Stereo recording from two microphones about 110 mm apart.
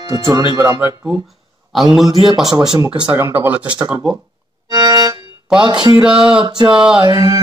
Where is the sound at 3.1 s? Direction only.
20° right (ahead or behind).